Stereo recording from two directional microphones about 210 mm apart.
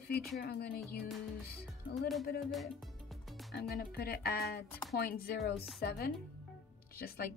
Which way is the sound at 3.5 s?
50° left (ahead or behind).